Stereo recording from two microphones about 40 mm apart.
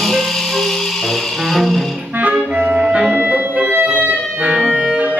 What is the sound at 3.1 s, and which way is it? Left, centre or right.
Clarinet, right.